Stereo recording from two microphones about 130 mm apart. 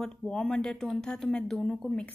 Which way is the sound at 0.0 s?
5° left (ahead or behind).